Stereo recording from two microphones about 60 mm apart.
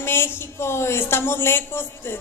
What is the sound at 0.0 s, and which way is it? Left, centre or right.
A woman's voice, left.